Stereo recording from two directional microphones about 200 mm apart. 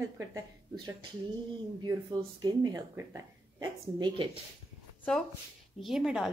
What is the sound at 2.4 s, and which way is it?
Speech, 20° right (ahead or behind).